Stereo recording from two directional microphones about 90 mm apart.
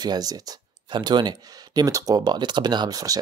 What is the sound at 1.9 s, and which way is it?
Speech, 40° right (ahead or behind).